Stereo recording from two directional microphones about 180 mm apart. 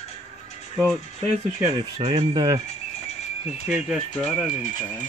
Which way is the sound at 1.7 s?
30° right (ahead or behind).